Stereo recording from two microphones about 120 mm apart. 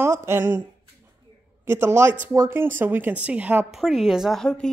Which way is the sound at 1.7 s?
20° right (ahead or behind).